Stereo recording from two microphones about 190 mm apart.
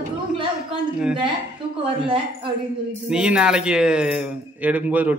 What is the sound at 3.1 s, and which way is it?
A man's voice, 5° right (ahead or behind).